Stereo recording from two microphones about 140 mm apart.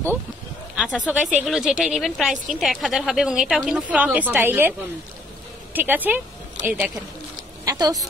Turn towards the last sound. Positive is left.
turn(degrees=-25)  # may be behind; listen again after turning